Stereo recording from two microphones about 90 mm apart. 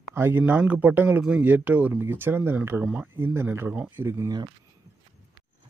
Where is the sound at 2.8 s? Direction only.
15° right (ahead or behind).